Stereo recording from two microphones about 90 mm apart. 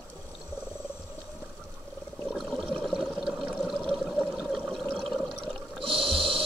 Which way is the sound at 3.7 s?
10° left (ahead or behind).